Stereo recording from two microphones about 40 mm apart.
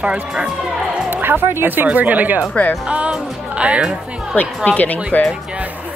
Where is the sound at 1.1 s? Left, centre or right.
Right.